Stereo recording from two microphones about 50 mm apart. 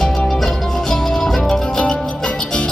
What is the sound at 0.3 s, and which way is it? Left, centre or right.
Music, centre.